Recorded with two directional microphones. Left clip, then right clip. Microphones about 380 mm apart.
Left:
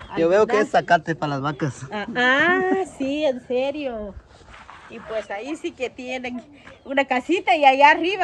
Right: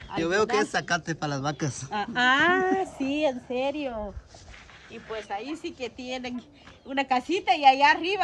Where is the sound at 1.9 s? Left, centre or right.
Centre.